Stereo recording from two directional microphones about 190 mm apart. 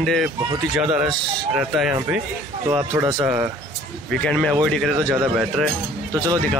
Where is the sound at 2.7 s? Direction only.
20° right (ahead or behind).